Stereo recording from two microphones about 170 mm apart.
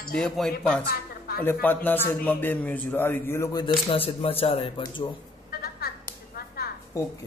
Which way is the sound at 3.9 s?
35° left (ahead or behind).